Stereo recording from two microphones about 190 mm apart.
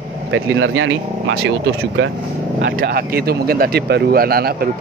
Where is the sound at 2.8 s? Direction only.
55° right (ahead or behind).